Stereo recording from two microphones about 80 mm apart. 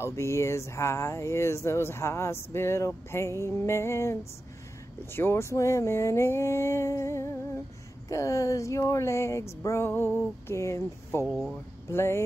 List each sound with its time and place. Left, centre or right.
0.0 s speech: left